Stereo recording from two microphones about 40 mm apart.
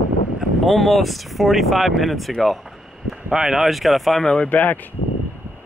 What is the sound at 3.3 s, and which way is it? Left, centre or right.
Speech, centre.